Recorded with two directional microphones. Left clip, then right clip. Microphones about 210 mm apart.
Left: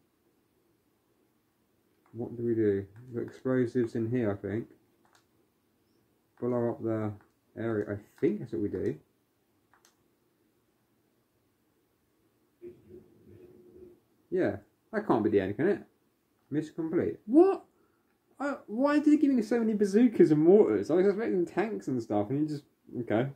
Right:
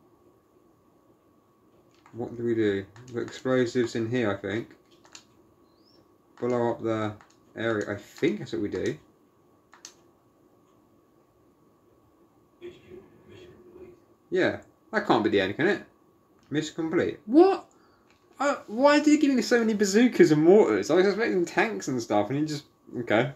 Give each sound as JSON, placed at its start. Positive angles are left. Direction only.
{"t": 3.3, "sound": "speech", "side_deg": 25}
{"t": 6.4, "sound": "speech", "side_deg": 15}
{"t": 14.3, "sound": "speech", "side_deg": 20}